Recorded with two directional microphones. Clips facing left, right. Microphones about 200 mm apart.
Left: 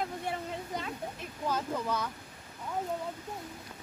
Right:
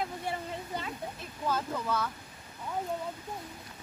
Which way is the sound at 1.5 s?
15° left (ahead or behind).